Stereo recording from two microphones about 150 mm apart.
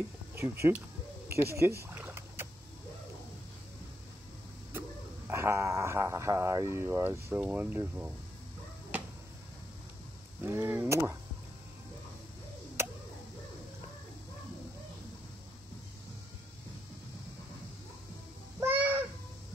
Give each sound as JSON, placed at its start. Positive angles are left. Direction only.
{"t": 0.4, "sound": "speech", "side_deg": -15}
{"t": 2.0, "sound": "rowboat", "side_deg": -15}
{"t": 5.3, "sound": "speech", "side_deg": -20}
{"t": 10.4, "sound": "speech", "side_deg": -15}
{"t": 18.6, "sound": "a sound", "side_deg": -10}